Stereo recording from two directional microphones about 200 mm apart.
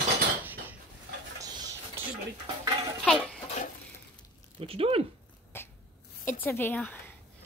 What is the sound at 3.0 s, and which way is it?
Goat, centre (ahead or behind).